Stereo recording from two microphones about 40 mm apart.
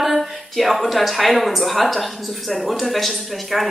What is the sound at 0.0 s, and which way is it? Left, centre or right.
Speech, centre.